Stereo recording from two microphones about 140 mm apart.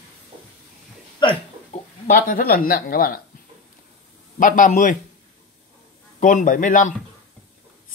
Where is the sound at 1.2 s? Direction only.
35° left (ahead or behind).